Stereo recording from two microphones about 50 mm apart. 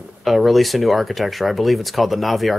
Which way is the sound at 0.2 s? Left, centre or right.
Centre.